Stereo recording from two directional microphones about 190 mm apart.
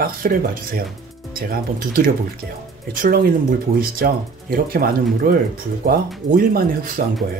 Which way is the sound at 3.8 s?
50° right (ahead or behind).